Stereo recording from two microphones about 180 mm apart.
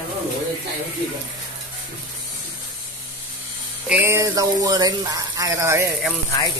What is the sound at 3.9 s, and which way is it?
Speech, 15° right (ahead or behind).